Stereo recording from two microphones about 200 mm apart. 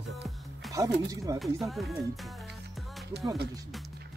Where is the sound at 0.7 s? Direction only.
15° right (ahead or behind).